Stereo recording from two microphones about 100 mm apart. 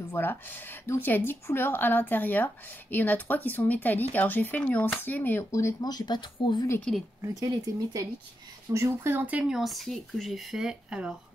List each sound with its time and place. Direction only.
0.1 s speech: 20° left (ahead or behind)
5.5 s speech: 30° left (ahead or behind)
5.9 s speech: 45° left (ahead or behind)
7.2 s speech: 30° right (ahead or behind); by 11.1 s 10° right (ahead or behind)